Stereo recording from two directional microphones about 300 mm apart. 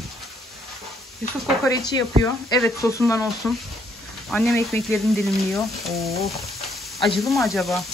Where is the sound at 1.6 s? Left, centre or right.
Centre.